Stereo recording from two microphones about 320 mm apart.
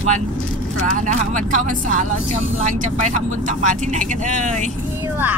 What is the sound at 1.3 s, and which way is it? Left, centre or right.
Speech, right.